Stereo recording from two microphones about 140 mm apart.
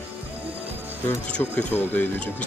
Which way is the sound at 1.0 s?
15° left (ahead or behind).